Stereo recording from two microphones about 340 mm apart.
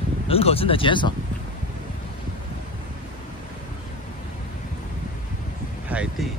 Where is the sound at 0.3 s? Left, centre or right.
Centre.